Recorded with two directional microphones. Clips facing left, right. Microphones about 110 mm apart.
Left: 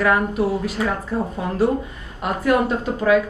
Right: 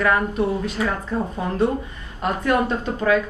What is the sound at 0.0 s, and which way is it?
Speech, 5° left (ahead or behind).